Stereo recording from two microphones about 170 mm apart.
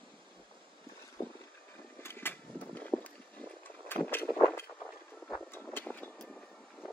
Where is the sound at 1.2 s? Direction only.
15° left (ahead or behind).